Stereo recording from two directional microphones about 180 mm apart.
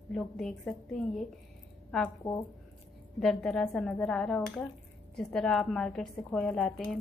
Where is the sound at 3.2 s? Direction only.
Centre (ahead or behind).